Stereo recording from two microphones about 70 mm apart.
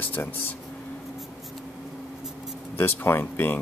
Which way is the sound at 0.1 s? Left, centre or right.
Left.